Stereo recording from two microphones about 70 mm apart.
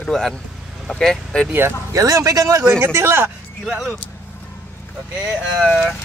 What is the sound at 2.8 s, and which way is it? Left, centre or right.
Speech, right.